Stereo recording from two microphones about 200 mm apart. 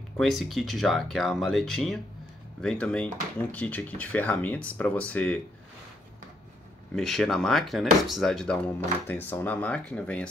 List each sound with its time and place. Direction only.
0.2 s speech: centre (ahead or behind)
7.0 s speech: centre (ahead or behind)